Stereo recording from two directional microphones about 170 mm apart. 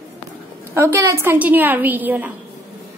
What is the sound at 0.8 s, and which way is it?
Speech, 15° right (ahead or behind).